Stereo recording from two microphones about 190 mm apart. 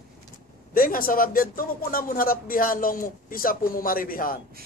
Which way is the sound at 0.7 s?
50° left (ahead or behind).